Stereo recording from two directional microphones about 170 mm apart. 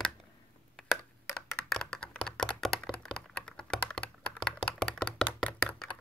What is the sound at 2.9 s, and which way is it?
Computer keyboard, 5° left (ahead or behind).